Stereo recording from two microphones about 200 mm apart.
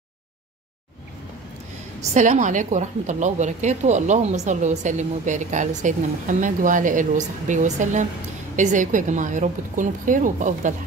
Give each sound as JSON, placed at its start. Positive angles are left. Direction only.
{"t": 2.0, "sound": "a woman's voice", "side_deg": -35}